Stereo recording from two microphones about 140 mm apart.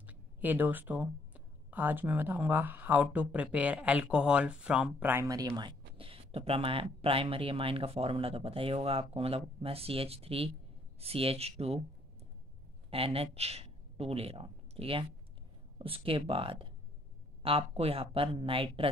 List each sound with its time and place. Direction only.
0.0 s speech: 10° right (ahead or behind)
5.6 s speech: 35° right (ahead or behind)
12.9 s speech: 45° right (ahead or behind)